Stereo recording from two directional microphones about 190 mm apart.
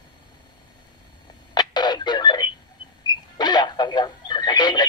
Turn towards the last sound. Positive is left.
turn(degrees=25)  # may be behind; listen again after turning